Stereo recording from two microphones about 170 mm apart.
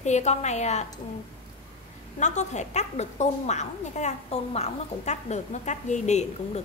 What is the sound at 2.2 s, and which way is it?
A woman's voice, 45° left (ahead or behind).